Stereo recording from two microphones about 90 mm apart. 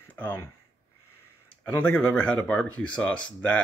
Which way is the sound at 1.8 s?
15° left (ahead or behind).